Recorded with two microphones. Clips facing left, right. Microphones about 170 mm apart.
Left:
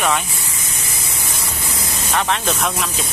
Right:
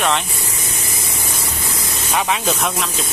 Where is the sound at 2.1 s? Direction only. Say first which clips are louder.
Right 1 dB; 5° right (ahead or behind).